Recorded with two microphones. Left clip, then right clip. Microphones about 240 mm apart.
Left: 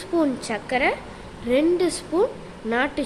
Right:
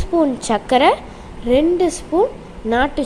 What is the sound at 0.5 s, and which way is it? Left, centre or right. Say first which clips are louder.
Speech: right 10 dB; right.